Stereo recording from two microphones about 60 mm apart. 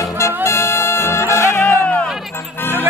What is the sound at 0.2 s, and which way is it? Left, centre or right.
Music, left.